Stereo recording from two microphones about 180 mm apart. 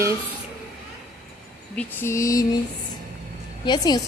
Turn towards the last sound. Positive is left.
turn(degrees=25)  # may be behind; listen again after turning